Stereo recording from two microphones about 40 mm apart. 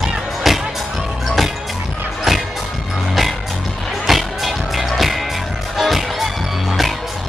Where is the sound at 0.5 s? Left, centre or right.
Centre.